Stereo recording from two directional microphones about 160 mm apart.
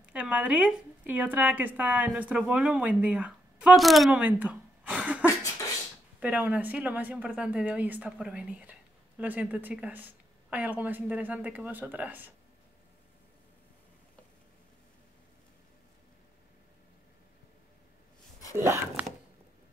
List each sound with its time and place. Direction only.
0.1 s speech: 10° right (ahead or behind)
5.2 s beatboxing: 20° left (ahead or behind)
6.1 s speech: 10° right (ahead or behind)
18.6 s speech: 15° right (ahead or behind)